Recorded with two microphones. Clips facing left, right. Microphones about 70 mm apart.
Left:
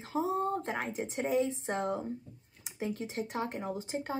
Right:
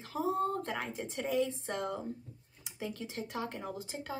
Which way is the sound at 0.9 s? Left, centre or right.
Left.